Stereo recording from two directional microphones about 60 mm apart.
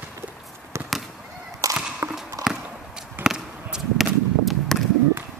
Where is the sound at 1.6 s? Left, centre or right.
Right.